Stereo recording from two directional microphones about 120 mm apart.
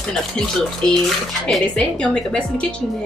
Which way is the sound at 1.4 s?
10° left (ahead or behind).